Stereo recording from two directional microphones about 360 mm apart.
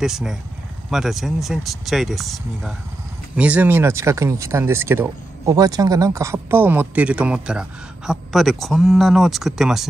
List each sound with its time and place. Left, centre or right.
0.0 s speech: centre